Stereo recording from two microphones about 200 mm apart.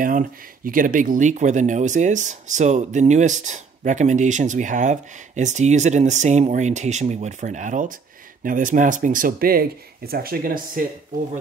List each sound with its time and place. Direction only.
0.7 s speech: 45° right (ahead or behind)